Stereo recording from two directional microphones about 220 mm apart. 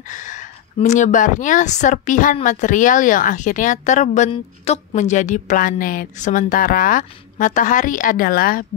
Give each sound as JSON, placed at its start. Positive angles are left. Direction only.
{"t": 0.1, "sound": "a woman's voice", "side_deg": 35}